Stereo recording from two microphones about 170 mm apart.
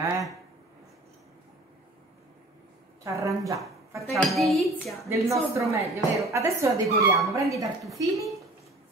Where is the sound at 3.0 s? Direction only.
20° right (ahead or behind).